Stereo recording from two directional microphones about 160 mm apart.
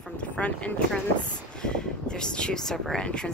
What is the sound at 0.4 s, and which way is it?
A woman's voice, 10° left (ahead or behind).